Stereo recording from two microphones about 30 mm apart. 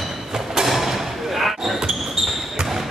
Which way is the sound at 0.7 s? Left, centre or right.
Centre.